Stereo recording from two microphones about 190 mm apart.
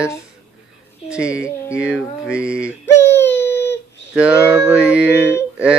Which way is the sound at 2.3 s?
5° right (ahead or behind).